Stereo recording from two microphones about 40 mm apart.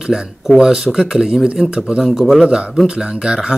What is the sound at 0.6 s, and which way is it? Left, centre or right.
Speech, centre.